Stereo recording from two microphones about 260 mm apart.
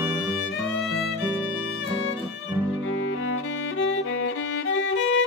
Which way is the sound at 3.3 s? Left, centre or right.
Left.